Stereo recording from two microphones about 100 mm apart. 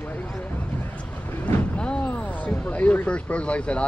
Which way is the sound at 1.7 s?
10° left (ahead or behind).